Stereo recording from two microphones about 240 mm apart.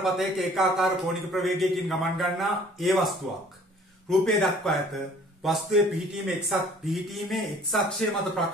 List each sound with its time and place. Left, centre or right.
0.0 s a man's voice: centre